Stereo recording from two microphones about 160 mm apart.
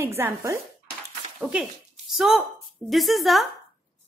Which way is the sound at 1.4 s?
5° right (ahead or behind).